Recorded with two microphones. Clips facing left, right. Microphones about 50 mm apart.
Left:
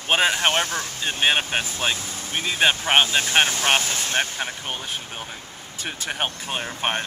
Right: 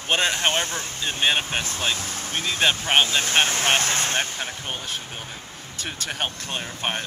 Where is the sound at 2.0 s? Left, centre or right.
Right.